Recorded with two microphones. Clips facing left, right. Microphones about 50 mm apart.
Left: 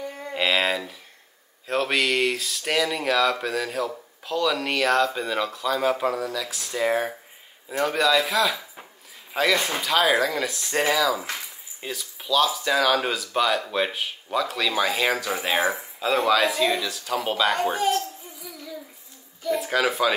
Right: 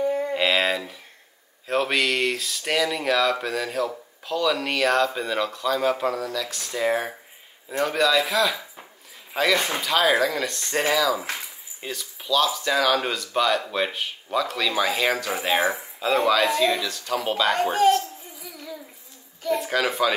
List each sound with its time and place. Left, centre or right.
0.3 s speech: centre
11.1 s speech: centre
11.8 s speech: centre
19.5 s speech: centre